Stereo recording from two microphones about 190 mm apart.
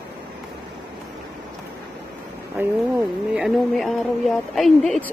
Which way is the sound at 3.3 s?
Centre (ahead or behind).